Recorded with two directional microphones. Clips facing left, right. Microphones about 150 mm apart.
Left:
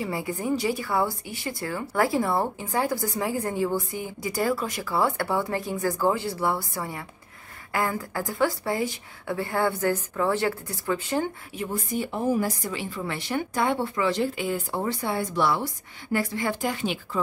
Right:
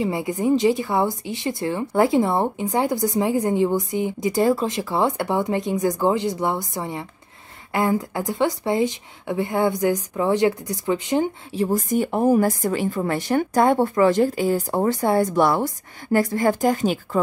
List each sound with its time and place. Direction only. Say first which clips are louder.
0.0 s a woman's voice: right 7 dB; 20° right (ahead or behind)
11.5 s speech: right 10 dB; 40° right (ahead or behind)